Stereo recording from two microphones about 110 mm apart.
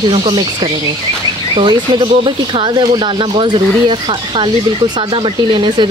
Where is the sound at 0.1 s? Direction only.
55° right (ahead or behind).